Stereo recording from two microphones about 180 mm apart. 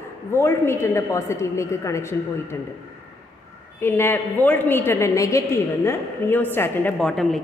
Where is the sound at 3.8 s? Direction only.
10° left (ahead or behind).